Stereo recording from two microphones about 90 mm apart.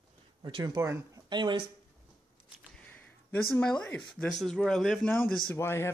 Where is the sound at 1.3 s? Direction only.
55° right (ahead or behind).